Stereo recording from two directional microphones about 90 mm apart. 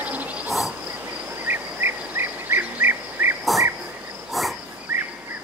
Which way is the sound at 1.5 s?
25° right (ahead or behind).